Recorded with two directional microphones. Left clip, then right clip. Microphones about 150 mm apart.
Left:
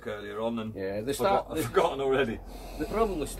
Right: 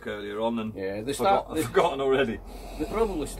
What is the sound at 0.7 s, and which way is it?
Speech, centre (ahead or behind).